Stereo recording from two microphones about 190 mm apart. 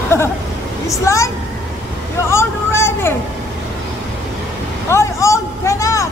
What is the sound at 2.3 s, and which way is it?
Vehicle, 15° left (ahead or behind).